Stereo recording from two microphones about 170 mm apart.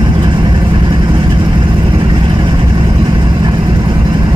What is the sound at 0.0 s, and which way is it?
Vehicle, 30° right (ahead or behind).